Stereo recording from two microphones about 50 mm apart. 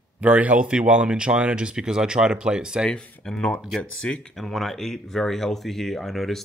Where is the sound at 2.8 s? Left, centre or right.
Centre.